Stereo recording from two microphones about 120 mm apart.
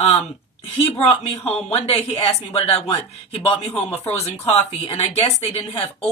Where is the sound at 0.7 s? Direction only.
50° left (ahead or behind).